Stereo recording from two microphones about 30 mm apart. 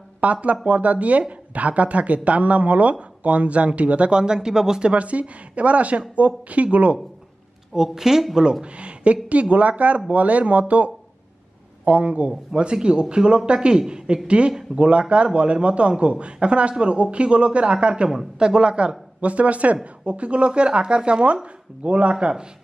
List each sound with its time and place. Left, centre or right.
0.2 s speech: right
4.1 s speech: right
4.8 s speech: right
7.7 s speech: centre
8.7 s speech: right
19.2 s speech: right